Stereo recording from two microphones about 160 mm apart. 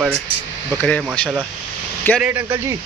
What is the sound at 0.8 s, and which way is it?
Speech, 10° left (ahead or behind).